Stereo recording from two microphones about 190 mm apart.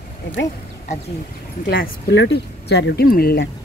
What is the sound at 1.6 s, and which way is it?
Speech, 55° left (ahead or behind).